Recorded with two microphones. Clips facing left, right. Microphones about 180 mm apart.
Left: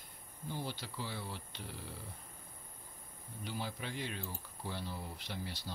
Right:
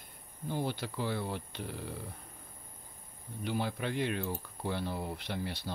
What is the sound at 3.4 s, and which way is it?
Speech, 65° right (ahead or behind).